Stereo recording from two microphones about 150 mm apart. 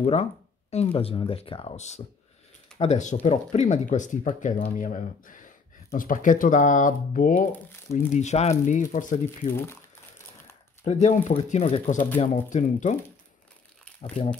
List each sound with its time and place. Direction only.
0.0 s speech: 45° left (ahead or behind); by 7.4 s 65° left (ahead or behind)
8.1 s speech: 50° left (ahead or behind)
9.5 s speech: 15° left (ahead or behind)
10.8 s speech: 50° left (ahead or behind)
14.2 s speech: 40° left (ahead or behind)